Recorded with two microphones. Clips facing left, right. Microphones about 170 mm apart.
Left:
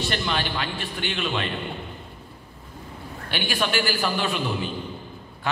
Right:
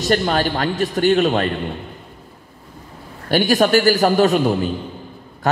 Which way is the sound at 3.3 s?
40° right (ahead or behind).